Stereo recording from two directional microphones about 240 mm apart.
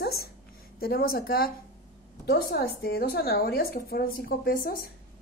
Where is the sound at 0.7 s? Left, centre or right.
Left.